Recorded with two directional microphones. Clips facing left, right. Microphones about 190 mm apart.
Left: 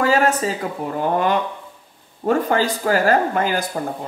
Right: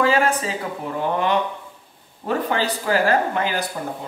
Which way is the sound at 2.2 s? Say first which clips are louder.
Left 4 dB; 45° left (ahead or behind).